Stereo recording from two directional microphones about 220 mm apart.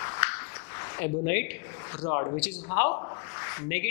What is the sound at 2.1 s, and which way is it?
Speech, 20° left (ahead or behind).